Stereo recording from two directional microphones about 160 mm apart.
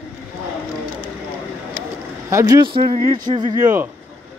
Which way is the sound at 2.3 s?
20° right (ahead or behind).